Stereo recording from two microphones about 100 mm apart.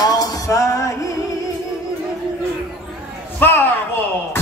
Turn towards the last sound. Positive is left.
turn(degrees=20)  # may be behind; listen again after turning